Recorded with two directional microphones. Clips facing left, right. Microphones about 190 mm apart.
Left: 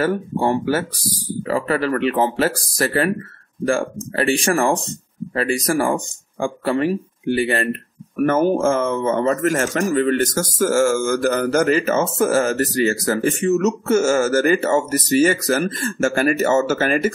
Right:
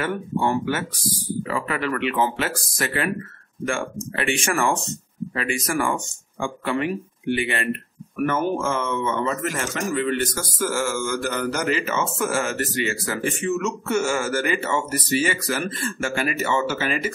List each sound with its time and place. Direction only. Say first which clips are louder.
0.0 s a man's voice: left 4 dB; 35° left (ahead or behind)